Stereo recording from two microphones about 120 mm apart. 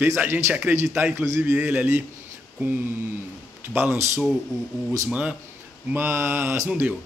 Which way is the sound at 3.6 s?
20° right (ahead or behind).